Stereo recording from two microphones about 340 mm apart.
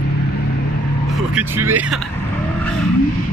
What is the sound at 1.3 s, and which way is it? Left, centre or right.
Speech, centre.